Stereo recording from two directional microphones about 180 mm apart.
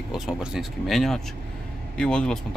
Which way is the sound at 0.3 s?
5° right (ahead or behind).